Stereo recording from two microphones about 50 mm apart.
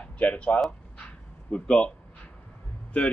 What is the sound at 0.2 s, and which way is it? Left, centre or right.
Speech, left.